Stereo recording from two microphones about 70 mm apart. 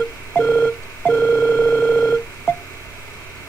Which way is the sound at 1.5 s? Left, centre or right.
Left.